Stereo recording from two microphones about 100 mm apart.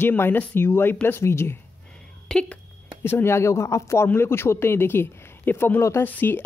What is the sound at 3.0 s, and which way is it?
Speech, 25° left (ahead or behind).